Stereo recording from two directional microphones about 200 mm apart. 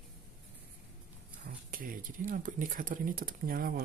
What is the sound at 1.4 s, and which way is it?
Speech, 45° right (ahead or behind).